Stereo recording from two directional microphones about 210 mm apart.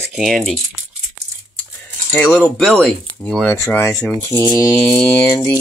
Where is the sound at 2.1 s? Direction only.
10° left (ahead or behind).